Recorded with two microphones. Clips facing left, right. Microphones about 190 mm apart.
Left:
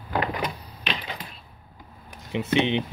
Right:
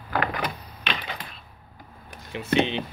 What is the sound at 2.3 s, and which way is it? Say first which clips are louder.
Speech: left 1 dB; 20° left (ahead or behind).